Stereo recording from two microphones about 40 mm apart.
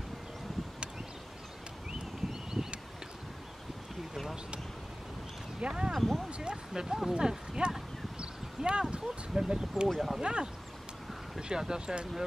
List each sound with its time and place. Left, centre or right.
2.5 s a sound: centre
5.6 s speech: right
5.9 s speech: centre
6.3 s a sound: right
8.9 s speech: centre
9.9 s speech: centre
10.2 s speech: right